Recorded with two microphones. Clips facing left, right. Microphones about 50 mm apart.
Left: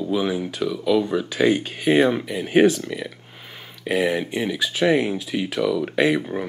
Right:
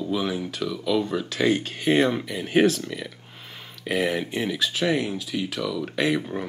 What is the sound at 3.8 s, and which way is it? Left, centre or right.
Speech, centre.